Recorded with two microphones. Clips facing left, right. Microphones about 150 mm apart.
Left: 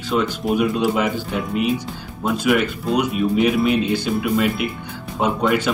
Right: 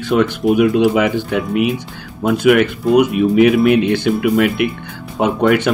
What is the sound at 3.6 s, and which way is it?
Speech, 65° right (ahead or behind).